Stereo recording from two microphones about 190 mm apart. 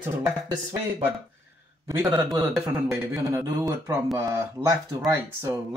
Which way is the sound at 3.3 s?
15° right (ahead or behind).